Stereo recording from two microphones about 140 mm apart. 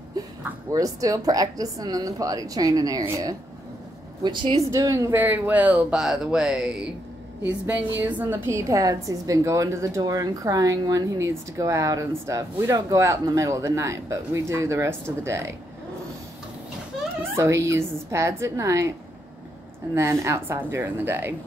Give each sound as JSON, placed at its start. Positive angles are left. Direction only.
{"t": 0.2, "sound": "a sound", "side_deg": -25}
{"t": 0.7, "sound": "a woman's voice", "side_deg": -25}
{"t": 4.6, "sound": "a woman's voice", "side_deg": -25}
{"t": 17.4, "sound": "a woman's voice", "side_deg": -20}